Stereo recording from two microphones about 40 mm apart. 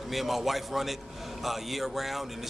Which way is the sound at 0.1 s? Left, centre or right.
Centre.